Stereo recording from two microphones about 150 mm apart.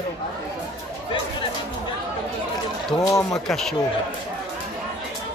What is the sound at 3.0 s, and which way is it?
Speech, 20° left (ahead or behind).